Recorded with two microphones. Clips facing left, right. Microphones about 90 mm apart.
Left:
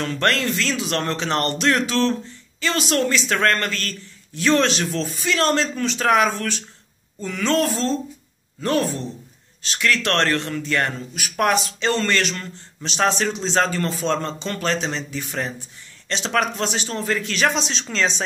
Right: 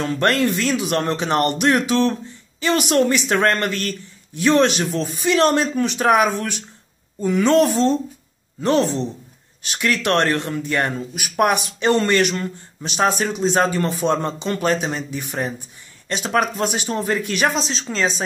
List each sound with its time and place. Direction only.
0.0 s speech: 15° right (ahead or behind)
17.6 s speech: centre (ahead or behind)